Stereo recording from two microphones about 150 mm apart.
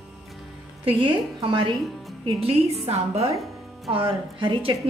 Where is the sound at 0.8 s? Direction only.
35° right (ahead or behind).